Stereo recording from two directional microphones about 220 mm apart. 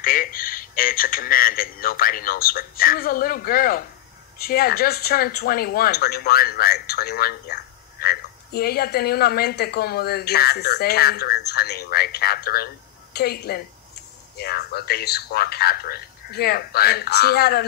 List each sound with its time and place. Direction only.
0.0 s speech: 40° left (ahead or behind)